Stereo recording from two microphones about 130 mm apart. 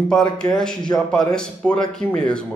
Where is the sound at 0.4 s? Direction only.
5° left (ahead or behind).